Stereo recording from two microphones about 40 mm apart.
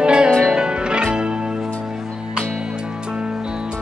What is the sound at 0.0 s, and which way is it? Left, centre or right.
Music, right.